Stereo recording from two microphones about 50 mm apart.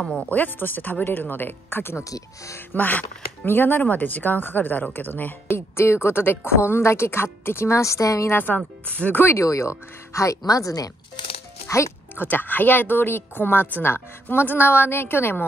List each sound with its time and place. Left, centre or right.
0.3 s speech: left
2.7 s speech: left
5.5 s a woman's voice: left
8.5 s speech: left
9.1 s speech: left
9.4 s speech: left
12.2 s speech: left
13.8 s speech: left